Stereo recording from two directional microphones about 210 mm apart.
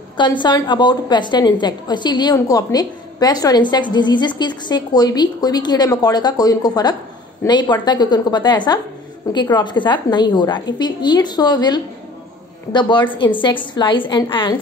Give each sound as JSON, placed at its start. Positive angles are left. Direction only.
{"t": 0.4, "sound": "a woman's voice", "side_deg": 20}